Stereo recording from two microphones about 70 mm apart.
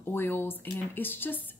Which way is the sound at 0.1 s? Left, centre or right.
Left.